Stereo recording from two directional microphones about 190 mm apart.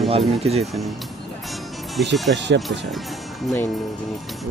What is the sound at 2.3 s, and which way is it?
Speech, 65° right (ahead or behind).